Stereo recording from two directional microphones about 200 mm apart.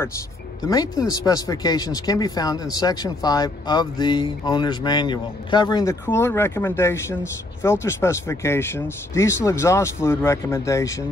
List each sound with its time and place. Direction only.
0.7 s speech: 20° left (ahead or behind)